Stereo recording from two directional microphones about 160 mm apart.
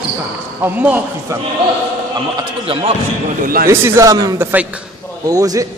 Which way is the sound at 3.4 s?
65° right (ahead or behind).